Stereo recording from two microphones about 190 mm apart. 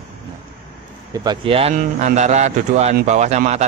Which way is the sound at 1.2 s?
25° right (ahead or behind).